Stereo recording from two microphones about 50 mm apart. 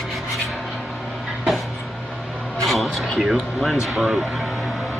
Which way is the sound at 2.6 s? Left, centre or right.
Centre.